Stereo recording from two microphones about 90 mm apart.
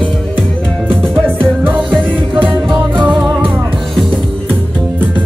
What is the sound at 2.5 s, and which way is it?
Music, 65° right (ahead or behind).